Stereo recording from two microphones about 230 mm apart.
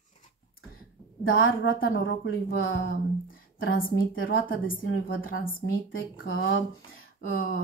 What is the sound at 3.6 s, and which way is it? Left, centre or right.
A woman's voice, left.